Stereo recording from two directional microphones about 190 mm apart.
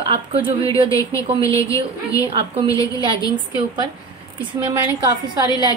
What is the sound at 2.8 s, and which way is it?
Speech, 25° right (ahead or behind).